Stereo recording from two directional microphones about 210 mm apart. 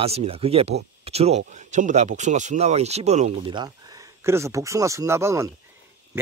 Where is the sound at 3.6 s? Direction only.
15° right (ahead or behind).